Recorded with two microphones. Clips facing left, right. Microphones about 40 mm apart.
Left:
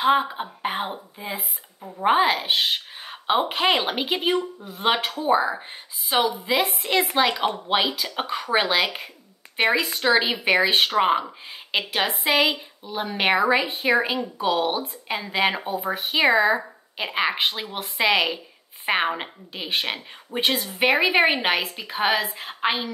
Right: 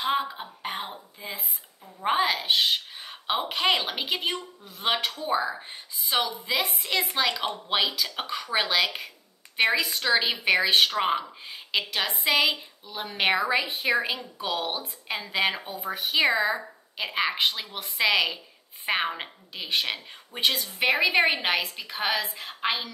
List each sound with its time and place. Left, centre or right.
0.2 s a woman's voice: left
1.8 s a woman's voice: left
2.0 s a woman's voice: centre